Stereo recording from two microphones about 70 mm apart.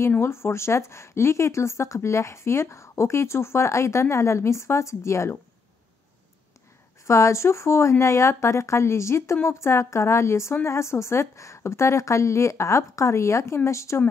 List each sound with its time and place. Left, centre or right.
0.2 s speech: left
7.1 s speech: left